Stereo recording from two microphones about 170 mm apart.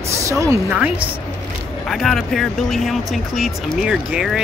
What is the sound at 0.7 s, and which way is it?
Speech, 5° right (ahead or behind).